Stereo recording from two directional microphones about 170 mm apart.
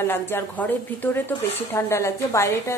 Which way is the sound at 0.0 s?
15° left (ahead or behind).